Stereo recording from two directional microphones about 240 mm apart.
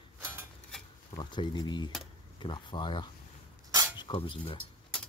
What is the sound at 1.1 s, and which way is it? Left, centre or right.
Speech, centre.